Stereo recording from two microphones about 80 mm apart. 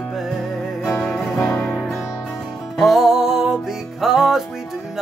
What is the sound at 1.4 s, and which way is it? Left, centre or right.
Music, centre.